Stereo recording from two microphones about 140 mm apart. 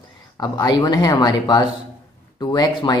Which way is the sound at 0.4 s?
30° left (ahead or behind).